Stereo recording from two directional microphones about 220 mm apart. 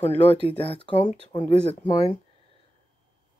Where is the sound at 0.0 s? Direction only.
25° left (ahead or behind).